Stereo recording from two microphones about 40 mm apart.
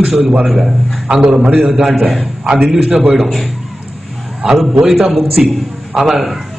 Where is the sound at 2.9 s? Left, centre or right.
Right.